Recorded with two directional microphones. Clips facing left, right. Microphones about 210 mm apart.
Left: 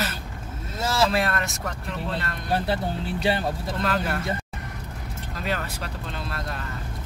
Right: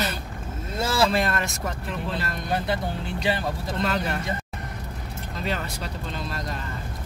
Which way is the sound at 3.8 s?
Centre (ahead or behind).